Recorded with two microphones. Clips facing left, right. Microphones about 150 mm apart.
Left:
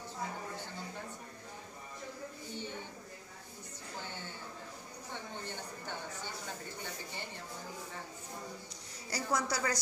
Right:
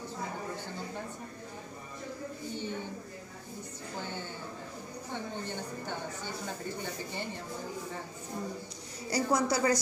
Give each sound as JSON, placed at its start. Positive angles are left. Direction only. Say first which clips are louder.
{"t": 9.1, "sound": "a woman's voice", "louder": "right 6 dB", "side_deg": -20}